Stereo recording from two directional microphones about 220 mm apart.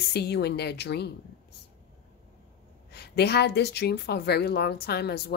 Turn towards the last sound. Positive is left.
turn(degrees=45)  # may be behind; listen again after turning